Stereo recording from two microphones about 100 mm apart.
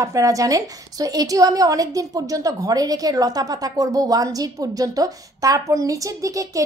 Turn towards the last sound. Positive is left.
turn(degrees=-35)  # may be behind; listen again after turning